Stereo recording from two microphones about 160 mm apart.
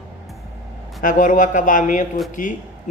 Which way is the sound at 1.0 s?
55° left (ahead or behind).